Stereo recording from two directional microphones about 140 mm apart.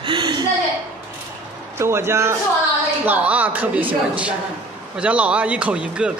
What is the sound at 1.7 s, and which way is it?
A man's voice, 20° right (ahead or behind).